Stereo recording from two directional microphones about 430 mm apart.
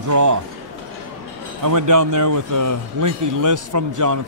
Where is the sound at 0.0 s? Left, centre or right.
Right.